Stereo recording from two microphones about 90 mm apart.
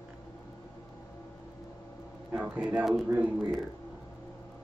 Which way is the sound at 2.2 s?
20° right (ahead or behind).